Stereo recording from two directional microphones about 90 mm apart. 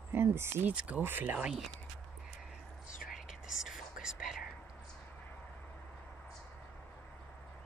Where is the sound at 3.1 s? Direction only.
5° right (ahead or behind).